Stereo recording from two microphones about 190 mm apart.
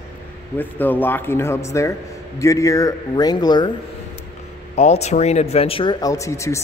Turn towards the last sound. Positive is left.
turn(degrees=15)  # may be behind; listen again after turning